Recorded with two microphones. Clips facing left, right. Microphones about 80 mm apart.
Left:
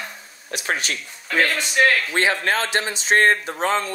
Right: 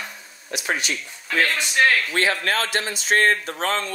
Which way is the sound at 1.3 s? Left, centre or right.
Centre.